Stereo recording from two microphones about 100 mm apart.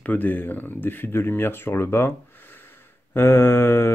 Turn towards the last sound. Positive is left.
turn(degrees=25)  # may be behind; listen again after turning